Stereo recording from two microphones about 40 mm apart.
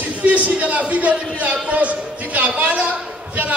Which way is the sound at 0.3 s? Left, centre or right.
Right.